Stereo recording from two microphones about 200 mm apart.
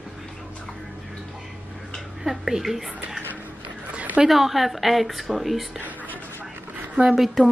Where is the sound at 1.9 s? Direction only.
Centre (ahead or behind).